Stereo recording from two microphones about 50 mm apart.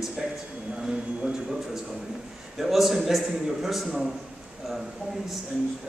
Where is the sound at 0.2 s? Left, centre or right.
Centre.